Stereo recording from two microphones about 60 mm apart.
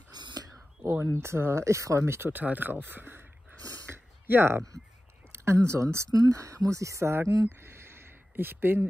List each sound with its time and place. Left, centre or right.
0.3 s whispering: right
1.2 s speech: right
2.3 s speech: right
4.3 s speech: right
6.1 s speech: right
7.4 s a sound: right